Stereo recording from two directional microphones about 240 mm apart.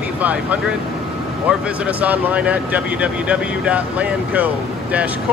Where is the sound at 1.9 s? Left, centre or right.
Centre.